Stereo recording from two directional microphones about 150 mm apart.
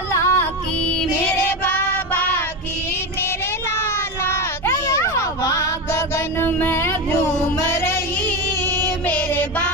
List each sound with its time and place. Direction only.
0.1 s child singing: 15° left (ahead or behind)
4.2 s a sound: 15° left (ahead or behind)
9.0 s child singing: 10° left (ahead or behind)